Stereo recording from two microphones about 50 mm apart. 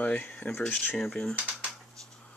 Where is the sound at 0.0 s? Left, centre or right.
Left.